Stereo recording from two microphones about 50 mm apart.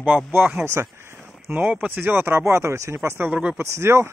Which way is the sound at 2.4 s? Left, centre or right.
Right.